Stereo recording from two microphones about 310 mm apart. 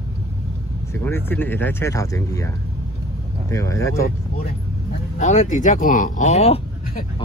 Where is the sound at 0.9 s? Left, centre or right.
Centre.